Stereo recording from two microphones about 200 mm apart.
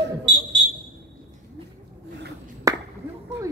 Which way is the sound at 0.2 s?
60° right (ahead or behind).